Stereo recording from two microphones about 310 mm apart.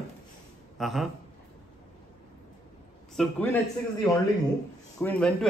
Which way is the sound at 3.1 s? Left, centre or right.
Centre.